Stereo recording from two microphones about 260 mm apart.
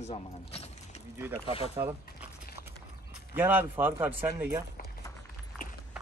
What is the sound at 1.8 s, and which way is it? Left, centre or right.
Speech, centre.